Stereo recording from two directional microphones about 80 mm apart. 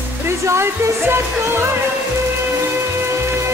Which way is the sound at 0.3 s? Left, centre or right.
Right.